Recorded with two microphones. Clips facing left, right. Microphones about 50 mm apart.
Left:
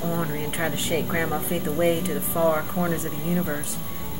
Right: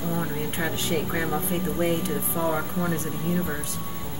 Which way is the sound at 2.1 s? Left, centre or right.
Centre.